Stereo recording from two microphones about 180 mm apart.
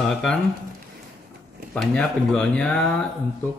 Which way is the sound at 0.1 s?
5° left (ahead or behind).